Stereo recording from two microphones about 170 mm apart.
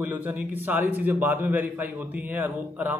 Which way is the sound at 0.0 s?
10° right (ahead or behind).